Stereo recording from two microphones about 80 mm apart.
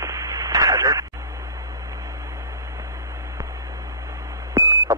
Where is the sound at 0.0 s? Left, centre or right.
Right.